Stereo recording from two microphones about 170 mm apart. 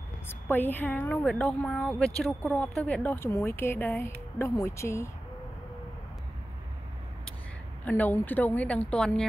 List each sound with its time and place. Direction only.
0.3 s a woman's voice: 10° left (ahead or behind)
7.8 s speech: 10° left (ahead or behind)